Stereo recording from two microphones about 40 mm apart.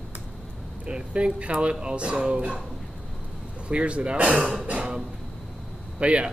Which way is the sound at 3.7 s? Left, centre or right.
Right.